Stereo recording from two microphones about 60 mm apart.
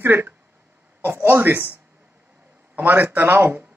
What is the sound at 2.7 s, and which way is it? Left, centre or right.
Speech, right.